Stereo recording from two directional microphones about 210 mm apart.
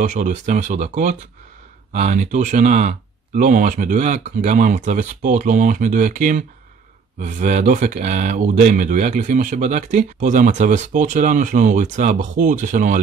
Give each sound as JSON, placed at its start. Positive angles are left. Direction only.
{"t": 0.0, "sound": "speech", "side_deg": -35}